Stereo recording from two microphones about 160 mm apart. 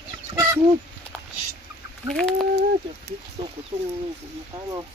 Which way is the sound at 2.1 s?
Centre (ahead or behind).